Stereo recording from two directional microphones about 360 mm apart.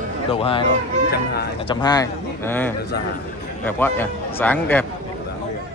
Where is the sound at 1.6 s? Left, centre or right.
Centre.